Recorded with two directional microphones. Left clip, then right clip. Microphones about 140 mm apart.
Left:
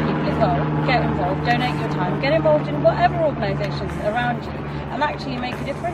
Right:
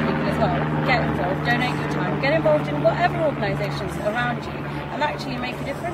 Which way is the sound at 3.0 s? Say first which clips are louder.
Left 2 dB; 5° right (ahead or behind).